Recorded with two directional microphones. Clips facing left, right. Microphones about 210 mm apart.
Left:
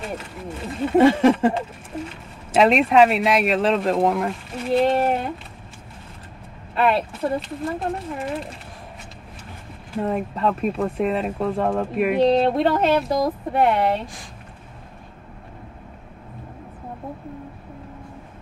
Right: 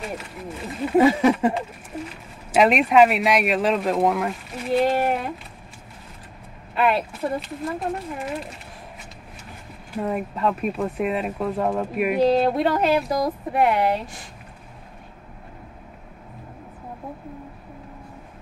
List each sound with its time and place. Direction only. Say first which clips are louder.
0.0 s speech: left 1 dB; centre (ahead or behind)
6.7 s speech: left 1 dB; centre (ahead or behind)
9.9 s speech: left 2 dB; centre (ahead or behind)